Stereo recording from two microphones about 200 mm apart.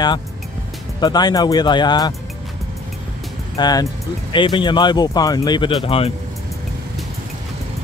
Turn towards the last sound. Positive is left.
turn(degrees=25)  # may be behind; listen again after turning